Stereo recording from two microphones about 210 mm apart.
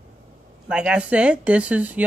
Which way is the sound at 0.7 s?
5° right (ahead or behind).